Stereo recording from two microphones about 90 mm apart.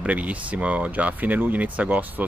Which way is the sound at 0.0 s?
15° right (ahead or behind).